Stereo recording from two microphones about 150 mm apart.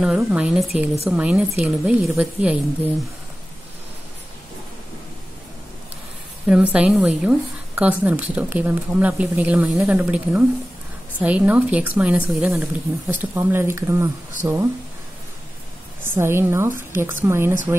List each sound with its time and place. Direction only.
0.0 s a woman's voice: 5° right (ahead or behind)
6.4 s speech: 10° right (ahead or behind)
16.2 s speech: 15° right (ahead or behind)